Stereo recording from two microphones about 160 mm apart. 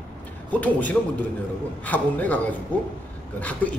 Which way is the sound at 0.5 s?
10° left (ahead or behind).